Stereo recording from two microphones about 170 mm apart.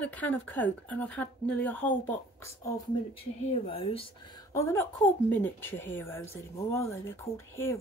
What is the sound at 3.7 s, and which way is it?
A woman's voice, 30° left (ahead or behind).